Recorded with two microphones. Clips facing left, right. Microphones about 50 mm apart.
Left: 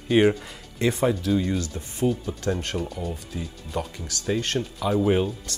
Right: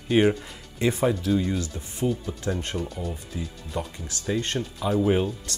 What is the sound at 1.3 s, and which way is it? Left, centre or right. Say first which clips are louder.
Speech: left 1 dB; centre.